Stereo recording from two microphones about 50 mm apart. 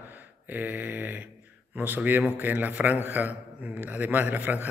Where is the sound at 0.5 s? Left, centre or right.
Right.